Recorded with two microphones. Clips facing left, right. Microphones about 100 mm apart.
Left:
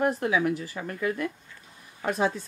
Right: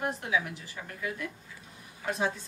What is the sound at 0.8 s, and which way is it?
Speech, 60° left (ahead or behind).